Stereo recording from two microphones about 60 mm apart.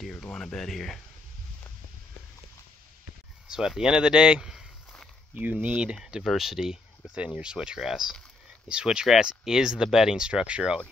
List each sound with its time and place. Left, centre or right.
0.1 s speech: centre
3.4 s speech: centre
5.3 s speech: right